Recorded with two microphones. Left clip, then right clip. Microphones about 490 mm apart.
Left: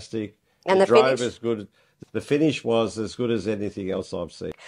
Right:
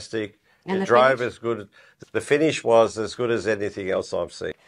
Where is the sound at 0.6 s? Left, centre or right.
Left.